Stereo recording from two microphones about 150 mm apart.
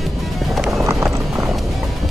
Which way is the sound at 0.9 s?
20° right (ahead or behind).